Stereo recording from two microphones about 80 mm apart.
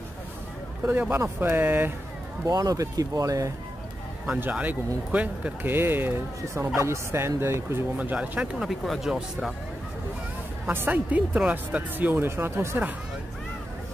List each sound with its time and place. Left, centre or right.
1.1 s speech: right
2.4 s speech: right
4.4 s speech: centre
6.5 s fowl: right
8.0 s speech: centre
8.5 s speech: centre
10.7 s speech: right